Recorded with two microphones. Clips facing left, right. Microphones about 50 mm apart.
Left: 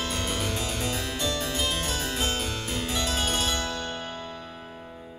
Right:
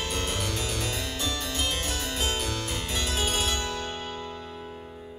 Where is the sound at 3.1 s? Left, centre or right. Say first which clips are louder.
Right 1 dB; centre.